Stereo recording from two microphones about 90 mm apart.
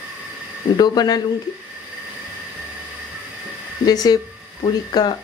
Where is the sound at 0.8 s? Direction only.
50° left (ahead or behind).